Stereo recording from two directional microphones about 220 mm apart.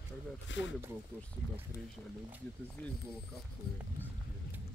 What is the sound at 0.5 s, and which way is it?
Speech, 55° left (ahead or behind).